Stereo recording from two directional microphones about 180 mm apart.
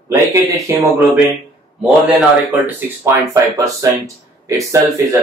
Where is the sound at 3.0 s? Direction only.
15° right (ahead or behind).